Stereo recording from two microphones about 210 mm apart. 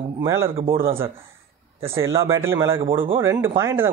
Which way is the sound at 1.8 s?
15° right (ahead or behind).